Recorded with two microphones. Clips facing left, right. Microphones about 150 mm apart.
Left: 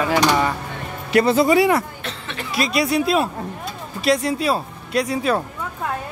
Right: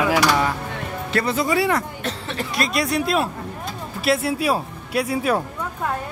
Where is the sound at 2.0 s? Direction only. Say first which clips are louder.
Right 4 dB; 35° right (ahead or behind).